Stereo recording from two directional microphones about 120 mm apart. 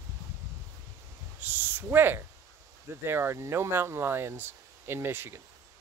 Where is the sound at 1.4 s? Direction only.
15° right (ahead or behind).